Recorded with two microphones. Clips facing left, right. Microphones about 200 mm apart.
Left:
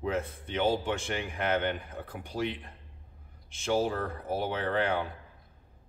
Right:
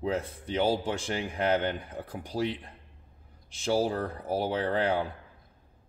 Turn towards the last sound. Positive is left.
turn(degrees=-35)  # may be behind; listen again after turning